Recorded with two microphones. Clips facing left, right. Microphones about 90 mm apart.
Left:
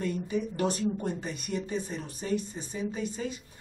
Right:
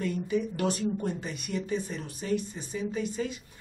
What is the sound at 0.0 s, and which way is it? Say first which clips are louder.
Speech: right 1 dB; 30° left (ahead or behind).